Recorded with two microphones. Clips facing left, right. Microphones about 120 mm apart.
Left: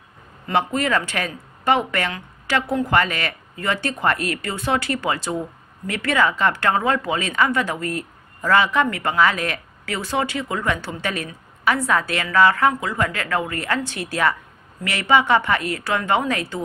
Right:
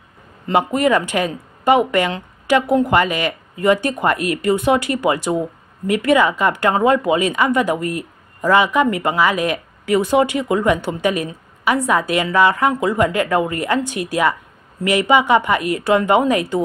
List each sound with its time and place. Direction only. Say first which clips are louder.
0.5 s speech: right 5 dB; 15° right (ahead or behind)